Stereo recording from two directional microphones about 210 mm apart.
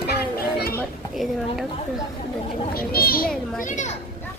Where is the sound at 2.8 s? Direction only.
45° left (ahead or behind).